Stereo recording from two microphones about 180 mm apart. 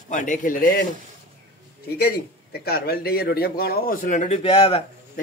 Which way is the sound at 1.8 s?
60° left (ahead or behind).